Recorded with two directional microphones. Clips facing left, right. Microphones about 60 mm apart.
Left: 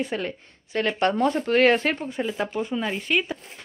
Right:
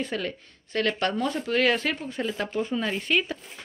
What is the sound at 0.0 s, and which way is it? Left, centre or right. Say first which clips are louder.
Speech: left 2 dB; left.